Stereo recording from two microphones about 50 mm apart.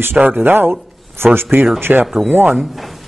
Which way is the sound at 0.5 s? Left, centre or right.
Right.